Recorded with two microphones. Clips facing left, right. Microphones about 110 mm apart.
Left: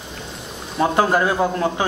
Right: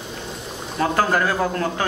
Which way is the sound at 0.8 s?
15° left (ahead or behind).